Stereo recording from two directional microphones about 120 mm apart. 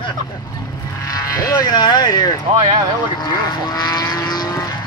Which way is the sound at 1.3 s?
30° left (ahead or behind).